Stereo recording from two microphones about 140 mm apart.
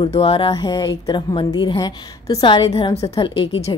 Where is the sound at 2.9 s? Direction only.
45° left (ahead or behind).